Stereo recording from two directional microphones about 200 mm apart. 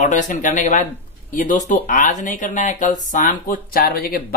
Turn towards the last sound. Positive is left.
turn(degrees=45)  # may be behind; listen again after turning